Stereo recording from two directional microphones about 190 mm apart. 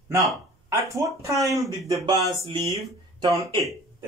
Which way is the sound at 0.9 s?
15° right (ahead or behind).